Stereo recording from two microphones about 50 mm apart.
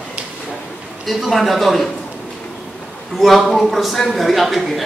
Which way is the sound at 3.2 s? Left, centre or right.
Centre.